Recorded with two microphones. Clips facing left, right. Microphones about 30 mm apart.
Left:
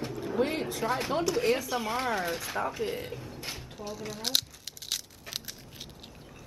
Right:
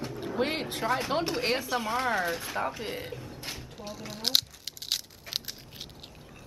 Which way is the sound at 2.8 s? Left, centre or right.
Centre.